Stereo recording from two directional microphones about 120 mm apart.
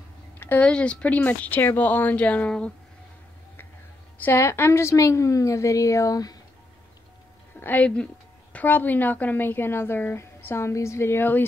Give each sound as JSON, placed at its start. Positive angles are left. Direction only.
{"t": 0.4, "sound": "a sound", "side_deg": 15}
{"t": 0.7, "sound": "a woman's voice", "side_deg": 5}
{"t": 4.2, "sound": "a woman's voice", "side_deg": 20}
{"t": 7.6, "sound": "a woman's voice", "side_deg": 10}